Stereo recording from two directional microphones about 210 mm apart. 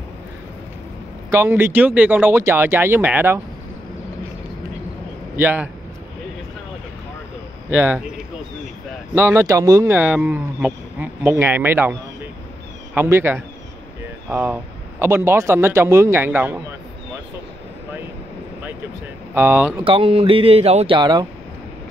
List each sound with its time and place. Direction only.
1.3 s speech: 10° right (ahead or behind)
5.3 s a man's voice: 10° right (ahead or behind)
7.7 s speech: 10° right (ahead or behind)
9.1 s speech: 10° right (ahead or behind)
19.3 s speech: 10° right (ahead or behind)
19.8 s speech: 25° right (ahead or behind)